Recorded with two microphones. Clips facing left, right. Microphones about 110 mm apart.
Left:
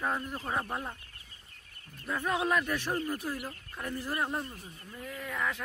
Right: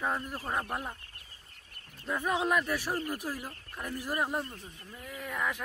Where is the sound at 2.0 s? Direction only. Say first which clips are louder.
Right 1 dB; 10° right (ahead or behind).